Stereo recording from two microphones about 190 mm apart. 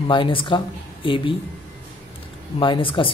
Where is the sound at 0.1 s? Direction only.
25° left (ahead or behind).